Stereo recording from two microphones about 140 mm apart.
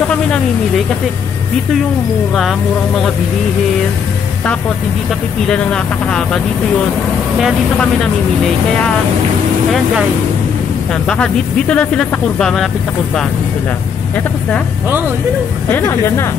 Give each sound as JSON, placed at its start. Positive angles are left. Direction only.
{"t": 5.5, "sound": "speech", "side_deg": 5}
{"t": 11.1, "sound": "speech", "side_deg": 5}
{"t": 15.7, "sound": "speech", "side_deg": 20}